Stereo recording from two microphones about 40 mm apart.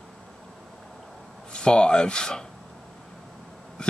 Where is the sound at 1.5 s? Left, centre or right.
Left.